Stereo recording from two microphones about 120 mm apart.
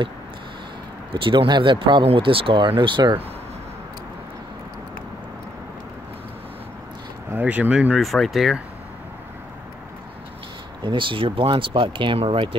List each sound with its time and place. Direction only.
1.1 s speech: 45° right (ahead or behind)
7.3 s speech: 15° right (ahead or behind)
8.0 s speech: centre (ahead or behind)
10.8 s speech: 45° right (ahead or behind)